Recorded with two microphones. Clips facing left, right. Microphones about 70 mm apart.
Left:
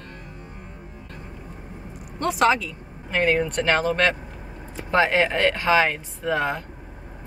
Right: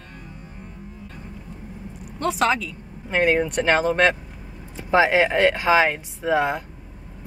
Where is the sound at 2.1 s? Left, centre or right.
Centre.